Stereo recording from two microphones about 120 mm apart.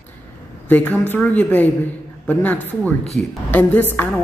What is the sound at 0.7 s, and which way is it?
Speech, 15° left (ahead or behind).